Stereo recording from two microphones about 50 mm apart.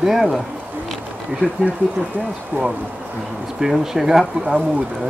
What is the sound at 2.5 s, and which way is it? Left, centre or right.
Speech, right.